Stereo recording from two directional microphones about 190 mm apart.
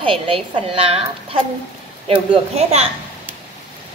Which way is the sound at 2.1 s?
30° right (ahead or behind).